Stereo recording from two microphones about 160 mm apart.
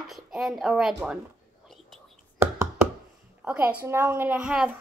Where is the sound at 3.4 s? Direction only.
10° right (ahead or behind).